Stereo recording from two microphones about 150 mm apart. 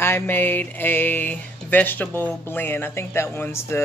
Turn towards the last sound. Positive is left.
turn(degrees=15)  # may be behind; listen again after turning